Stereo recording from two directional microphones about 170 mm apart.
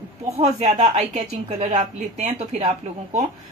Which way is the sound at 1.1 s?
40° right (ahead or behind).